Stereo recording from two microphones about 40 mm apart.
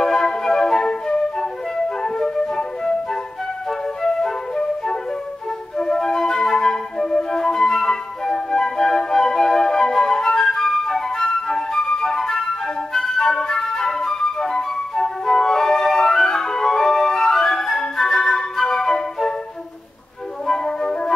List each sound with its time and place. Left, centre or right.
0.0 s flute: centre
20.4 s flute: centre